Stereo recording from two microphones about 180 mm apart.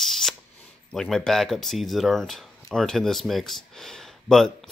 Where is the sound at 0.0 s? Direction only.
Centre (ahead or behind).